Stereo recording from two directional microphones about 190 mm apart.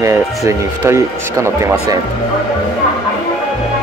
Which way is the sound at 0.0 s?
15° right (ahead or behind).